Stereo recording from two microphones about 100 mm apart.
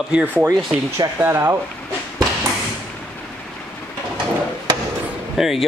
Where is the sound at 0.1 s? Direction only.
20° right (ahead or behind).